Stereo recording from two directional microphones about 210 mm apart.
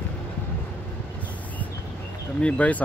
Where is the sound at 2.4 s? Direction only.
5° left (ahead or behind).